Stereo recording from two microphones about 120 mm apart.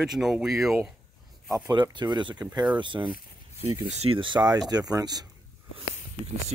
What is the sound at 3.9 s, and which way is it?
Speech, 55° right (ahead or behind).